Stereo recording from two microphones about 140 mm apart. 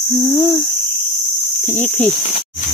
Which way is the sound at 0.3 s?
25° left (ahead or behind).